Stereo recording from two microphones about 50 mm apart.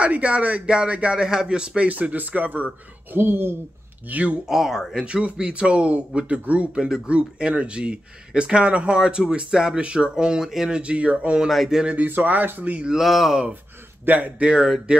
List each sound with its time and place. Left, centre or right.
0.0 s speech: right
1.8 s speech: right
3.2 s speech: right
4.1 s speech: right
4.5 s speech: centre
5.0 s speech: right
9.8 s speech: right
10.8 s speech: right
11.4 s speech: centre
11.8 s speech: right
12.1 s speech: right
12.9 s speech: centre
14.0 s speech: right
14.4 s speech: centre